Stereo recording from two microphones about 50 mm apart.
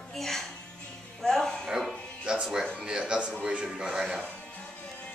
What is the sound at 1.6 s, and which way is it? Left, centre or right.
Music, centre.